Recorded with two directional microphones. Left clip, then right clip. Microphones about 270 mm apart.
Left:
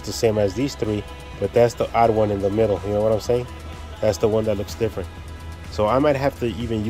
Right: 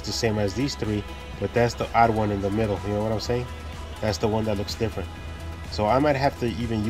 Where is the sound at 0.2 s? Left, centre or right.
Centre.